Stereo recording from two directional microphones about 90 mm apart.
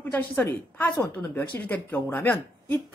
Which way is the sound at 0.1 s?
20° left (ahead or behind).